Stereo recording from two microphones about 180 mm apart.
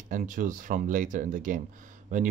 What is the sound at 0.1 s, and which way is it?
Speech, 45° right (ahead or behind).